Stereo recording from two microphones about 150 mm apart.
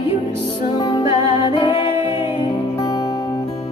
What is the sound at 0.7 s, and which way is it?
Music, 30° left (ahead or behind).